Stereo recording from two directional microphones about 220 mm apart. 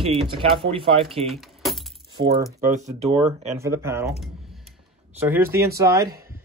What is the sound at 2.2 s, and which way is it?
Speech, 50° right (ahead or behind).